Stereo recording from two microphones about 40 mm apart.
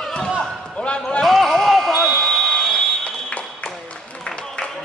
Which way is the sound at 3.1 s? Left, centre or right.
Left.